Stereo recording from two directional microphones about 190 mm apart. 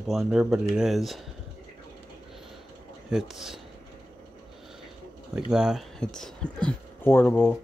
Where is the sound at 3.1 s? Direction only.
Centre (ahead or behind).